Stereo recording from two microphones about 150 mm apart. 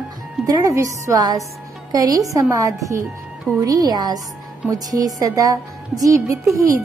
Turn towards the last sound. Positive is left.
turn(degrees=-20)  # may be behind; listen again after turning